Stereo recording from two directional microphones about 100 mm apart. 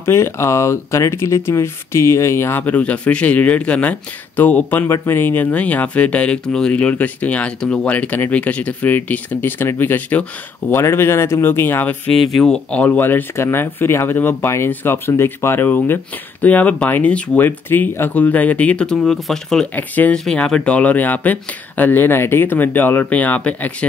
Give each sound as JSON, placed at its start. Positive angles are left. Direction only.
{"t": 0.0, "sound": "speech", "side_deg": 25}
{"t": 4.8, "sound": "speech", "side_deg": 30}
{"t": 12.4, "sound": "speech", "side_deg": 10}
{"t": 19.7, "sound": "speech", "side_deg": 15}